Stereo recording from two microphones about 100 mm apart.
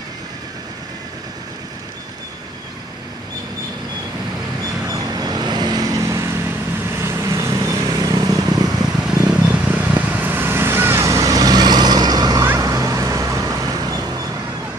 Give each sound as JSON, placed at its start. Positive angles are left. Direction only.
{"t": 4.8, "sound": "vehicle", "side_deg": -35}
{"t": 9.3, "sound": "vehicle", "side_deg": -10}